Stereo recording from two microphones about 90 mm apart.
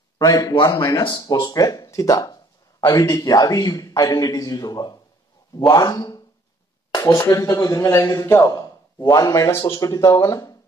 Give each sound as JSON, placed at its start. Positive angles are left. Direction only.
{"t": 0.2, "sound": "speech", "side_deg": 45}
{"t": 1.1, "sound": "speech", "side_deg": 55}